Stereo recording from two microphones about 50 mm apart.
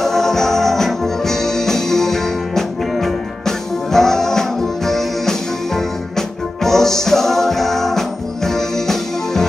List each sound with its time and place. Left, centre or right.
0.0 s music: centre